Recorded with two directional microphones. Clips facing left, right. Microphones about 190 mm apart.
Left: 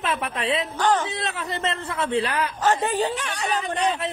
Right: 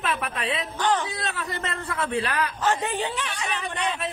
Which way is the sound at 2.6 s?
40° left (ahead or behind).